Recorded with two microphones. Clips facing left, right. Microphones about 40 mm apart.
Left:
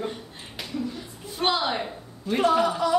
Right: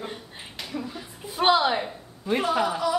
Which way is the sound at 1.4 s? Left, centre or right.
Centre.